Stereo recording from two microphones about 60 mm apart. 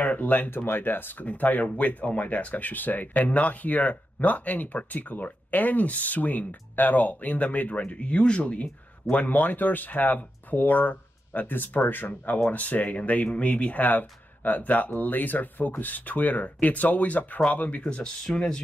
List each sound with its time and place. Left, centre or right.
0.0 s speech: left; by 18.6 s centre